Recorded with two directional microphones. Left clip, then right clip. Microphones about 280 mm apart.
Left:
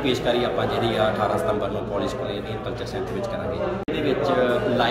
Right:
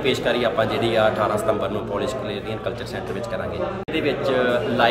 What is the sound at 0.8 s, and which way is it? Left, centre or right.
Speech, centre.